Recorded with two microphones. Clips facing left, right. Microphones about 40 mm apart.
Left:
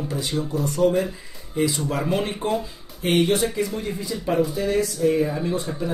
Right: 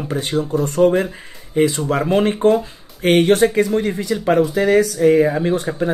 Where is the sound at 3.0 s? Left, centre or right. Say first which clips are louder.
Right 7 dB; right.